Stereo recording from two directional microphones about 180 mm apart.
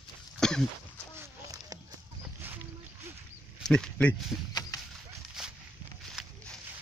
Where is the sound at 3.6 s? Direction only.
5° left (ahead or behind).